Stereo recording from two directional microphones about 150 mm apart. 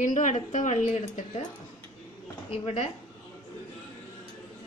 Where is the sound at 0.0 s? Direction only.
55° left (ahead or behind).